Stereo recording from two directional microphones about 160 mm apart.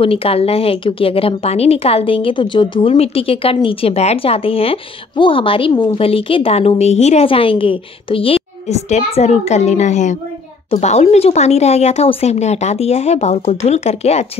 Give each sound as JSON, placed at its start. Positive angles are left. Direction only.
{"t": 0.0, "sound": "a woman's voice", "side_deg": 35}